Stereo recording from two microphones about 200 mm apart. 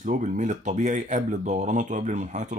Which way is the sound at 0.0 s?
40° right (ahead or behind).